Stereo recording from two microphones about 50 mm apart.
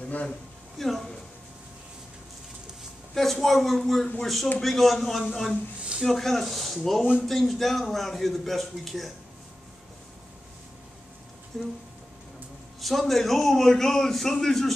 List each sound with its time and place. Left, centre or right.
0.0 s a sound: left
0.7 s a man's voice: centre
3.2 s a man's voice: centre
11.5 s a man's voice: centre
12.8 s a man's voice: centre